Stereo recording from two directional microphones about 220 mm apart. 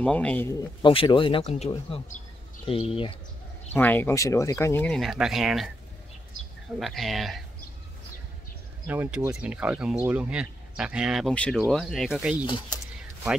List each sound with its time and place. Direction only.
0.0 s speech: 5° left (ahead or behind)
0.6 s speech: 20° left (ahead or behind)
3.7 s speech: 10° left (ahead or behind)
6.8 s speech: centre (ahead or behind)
8.8 s speech: 5° right (ahead or behind)